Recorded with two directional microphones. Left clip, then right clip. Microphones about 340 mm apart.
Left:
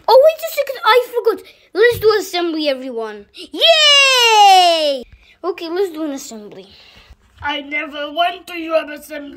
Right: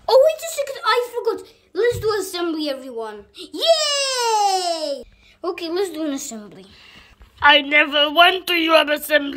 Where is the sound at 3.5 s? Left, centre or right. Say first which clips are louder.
Left 8 dB; centre.